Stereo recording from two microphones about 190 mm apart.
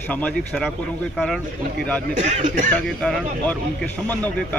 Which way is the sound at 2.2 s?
40° right (ahead or behind).